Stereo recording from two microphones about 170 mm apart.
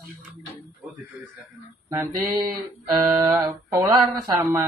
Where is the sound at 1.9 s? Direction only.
20° right (ahead or behind).